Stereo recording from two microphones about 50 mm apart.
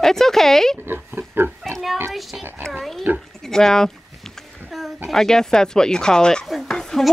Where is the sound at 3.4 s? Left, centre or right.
Centre.